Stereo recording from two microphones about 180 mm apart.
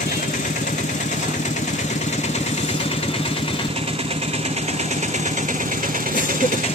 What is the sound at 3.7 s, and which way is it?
Vehicle, 35° right (ahead or behind).